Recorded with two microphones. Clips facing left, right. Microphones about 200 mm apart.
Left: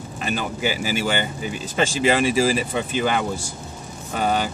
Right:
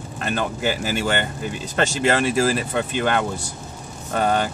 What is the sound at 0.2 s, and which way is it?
Speech, 5° left (ahead or behind).